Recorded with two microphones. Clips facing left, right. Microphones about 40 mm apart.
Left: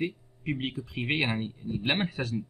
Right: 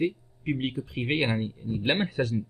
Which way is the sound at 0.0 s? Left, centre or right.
Centre.